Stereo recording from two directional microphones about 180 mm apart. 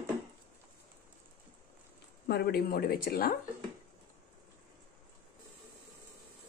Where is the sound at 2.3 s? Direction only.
60° left (ahead or behind).